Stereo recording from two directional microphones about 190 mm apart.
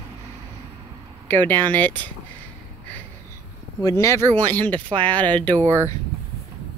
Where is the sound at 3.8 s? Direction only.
15° left (ahead or behind).